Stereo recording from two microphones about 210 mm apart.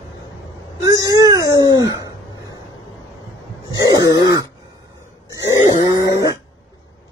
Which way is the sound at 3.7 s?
20° right (ahead or behind).